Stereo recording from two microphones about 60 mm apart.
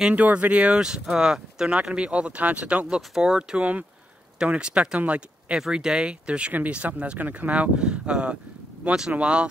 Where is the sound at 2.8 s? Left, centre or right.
Centre.